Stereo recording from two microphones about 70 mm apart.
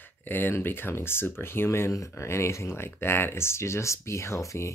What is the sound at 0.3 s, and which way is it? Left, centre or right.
Speech, left.